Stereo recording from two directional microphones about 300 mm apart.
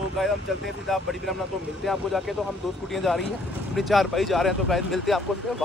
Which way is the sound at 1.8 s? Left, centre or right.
Centre.